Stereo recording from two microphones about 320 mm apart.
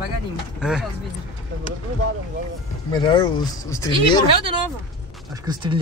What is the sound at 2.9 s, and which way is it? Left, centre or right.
Speech, centre.